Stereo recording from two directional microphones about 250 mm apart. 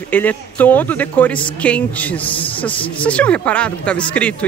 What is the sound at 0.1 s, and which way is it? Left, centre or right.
Speech, centre.